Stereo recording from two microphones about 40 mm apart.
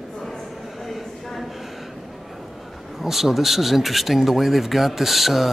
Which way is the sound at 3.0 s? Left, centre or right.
Centre.